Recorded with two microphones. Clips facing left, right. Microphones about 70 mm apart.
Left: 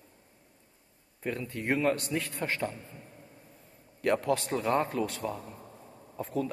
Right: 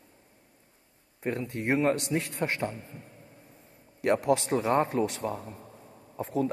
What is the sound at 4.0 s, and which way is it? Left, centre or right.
A man's voice, right.